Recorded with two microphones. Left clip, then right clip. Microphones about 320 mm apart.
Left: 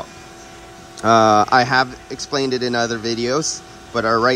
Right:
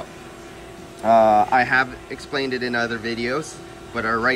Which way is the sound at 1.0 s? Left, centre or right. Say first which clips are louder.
Left 2 dB; left.